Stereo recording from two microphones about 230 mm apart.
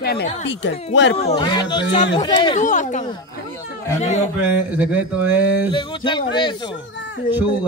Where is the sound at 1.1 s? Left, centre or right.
Left.